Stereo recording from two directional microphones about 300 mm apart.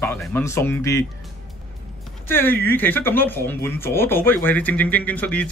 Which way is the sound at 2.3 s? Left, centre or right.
Centre.